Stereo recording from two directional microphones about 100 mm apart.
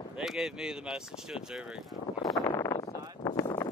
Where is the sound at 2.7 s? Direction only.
35° left (ahead or behind).